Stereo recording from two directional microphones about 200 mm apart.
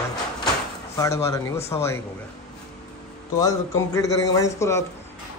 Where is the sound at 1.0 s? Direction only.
15° left (ahead or behind).